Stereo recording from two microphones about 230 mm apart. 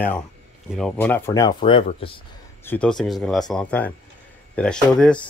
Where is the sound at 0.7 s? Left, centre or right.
Centre; by 2.2 s left.